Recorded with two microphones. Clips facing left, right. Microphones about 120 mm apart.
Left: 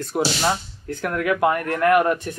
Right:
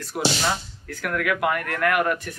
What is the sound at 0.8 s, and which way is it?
Speech, 30° left (ahead or behind).